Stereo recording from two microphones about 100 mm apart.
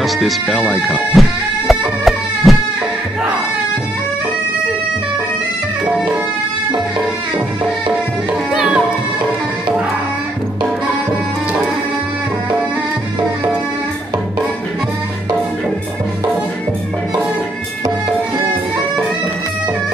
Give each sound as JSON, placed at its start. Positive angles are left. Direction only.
{"t": 0.0, "sound": "speech", "side_deg": 0}
{"t": 1.7, "sound": "a sound", "side_deg": 0}
{"t": 8.5, "sound": "music", "side_deg": -10}